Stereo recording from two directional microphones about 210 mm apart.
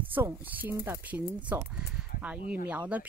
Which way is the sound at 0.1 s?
10° right (ahead or behind).